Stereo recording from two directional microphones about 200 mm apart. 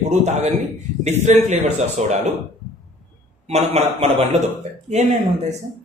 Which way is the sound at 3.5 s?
30° right (ahead or behind).